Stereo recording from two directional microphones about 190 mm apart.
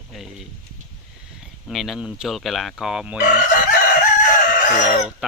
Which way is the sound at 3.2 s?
45° left (ahead or behind).